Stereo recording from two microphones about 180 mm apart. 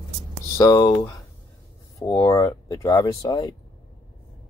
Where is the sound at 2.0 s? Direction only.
20° left (ahead or behind).